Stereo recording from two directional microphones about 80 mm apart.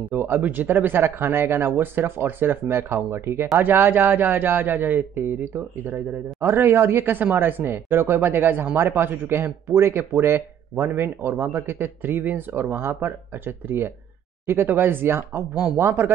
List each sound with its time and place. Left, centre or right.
0.1 s speech: right